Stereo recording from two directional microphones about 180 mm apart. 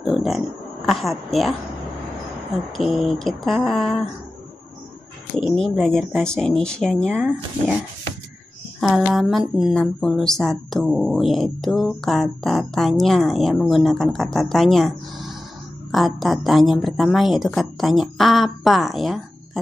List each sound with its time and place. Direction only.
0.0 s a sound: centre (ahead or behind)
0.8 s speech: centre (ahead or behind)
2.8 s speech: centre (ahead or behind)
5.4 s speech: 5° left (ahead or behind)
8.8 s speech: centre (ahead or behind)